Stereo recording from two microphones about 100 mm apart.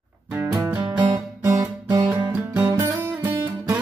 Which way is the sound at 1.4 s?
30° right (ahead or behind).